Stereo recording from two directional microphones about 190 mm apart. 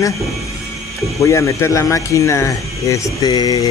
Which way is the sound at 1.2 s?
15° left (ahead or behind).